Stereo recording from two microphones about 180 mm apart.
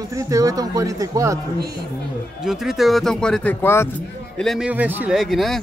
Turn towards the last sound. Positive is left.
turn(degrees=0)  # may be behind; listen again after turning